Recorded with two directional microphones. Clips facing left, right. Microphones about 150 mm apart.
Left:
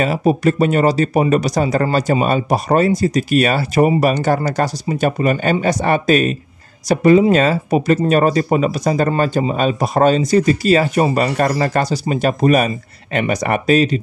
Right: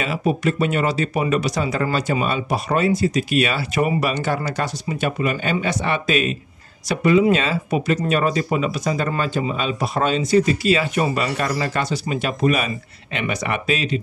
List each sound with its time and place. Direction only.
0.0 s speech: 40° left (ahead or behind)